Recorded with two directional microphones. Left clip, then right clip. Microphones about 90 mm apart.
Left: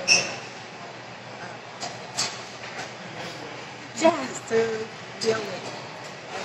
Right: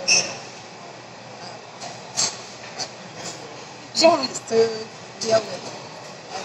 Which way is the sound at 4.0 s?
25° right (ahead or behind).